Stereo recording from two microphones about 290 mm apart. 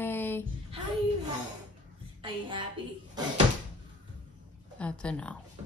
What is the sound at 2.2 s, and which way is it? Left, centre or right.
Speech, centre.